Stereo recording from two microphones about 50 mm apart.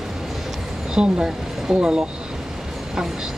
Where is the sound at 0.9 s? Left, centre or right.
Centre.